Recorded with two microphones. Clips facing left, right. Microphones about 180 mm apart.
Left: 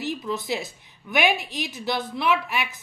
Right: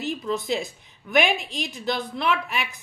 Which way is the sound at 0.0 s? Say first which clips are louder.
Right 1 dB; centre (ahead or behind).